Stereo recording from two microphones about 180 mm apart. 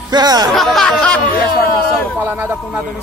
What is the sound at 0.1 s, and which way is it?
Music, 20° right (ahead or behind).